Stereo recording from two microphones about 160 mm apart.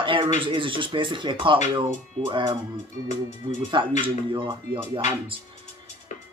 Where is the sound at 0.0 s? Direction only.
30° right (ahead or behind).